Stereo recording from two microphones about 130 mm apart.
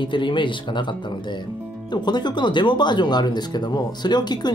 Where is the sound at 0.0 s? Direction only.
40° left (ahead or behind).